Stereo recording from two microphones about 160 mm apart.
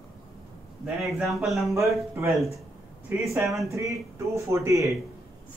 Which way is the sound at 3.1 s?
10° right (ahead or behind).